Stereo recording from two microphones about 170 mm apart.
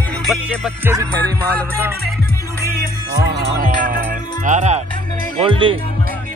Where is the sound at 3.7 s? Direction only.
55° right (ahead or behind).